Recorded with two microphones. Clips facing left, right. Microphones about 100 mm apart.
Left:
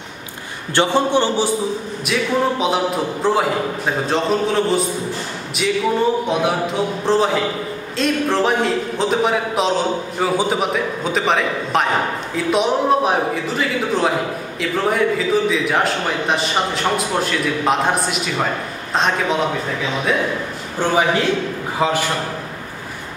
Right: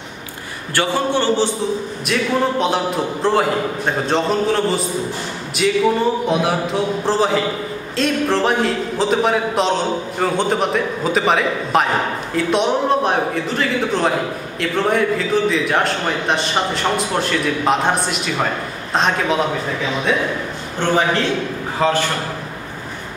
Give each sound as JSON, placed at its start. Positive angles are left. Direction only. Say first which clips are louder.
{"t": 0.7, "sound": "a man's voice", "louder": "left 2 dB", "side_deg": 20}
{"t": 2.6, "sound": "a man's voice", "louder": "even", "side_deg": 0}
{"t": 20.9, "sound": "a man's voice", "louder": "even", "side_deg": 10}